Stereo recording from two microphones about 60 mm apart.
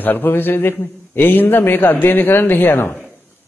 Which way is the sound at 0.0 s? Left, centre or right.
Left.